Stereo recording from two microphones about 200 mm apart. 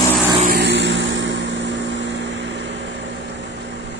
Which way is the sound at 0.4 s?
50° right (ahead or behind).